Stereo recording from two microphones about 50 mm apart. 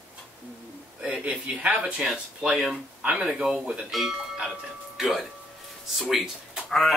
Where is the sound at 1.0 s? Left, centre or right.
Right.